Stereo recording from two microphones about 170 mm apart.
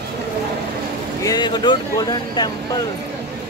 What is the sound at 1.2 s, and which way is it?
Speech, 25° left (ahead or behind).